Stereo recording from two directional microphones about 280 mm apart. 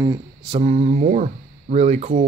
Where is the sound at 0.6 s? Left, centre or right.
Right.